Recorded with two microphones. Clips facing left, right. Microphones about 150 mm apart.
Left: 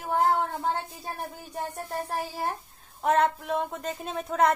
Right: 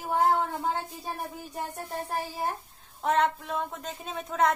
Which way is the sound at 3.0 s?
5° left (ahead or behind).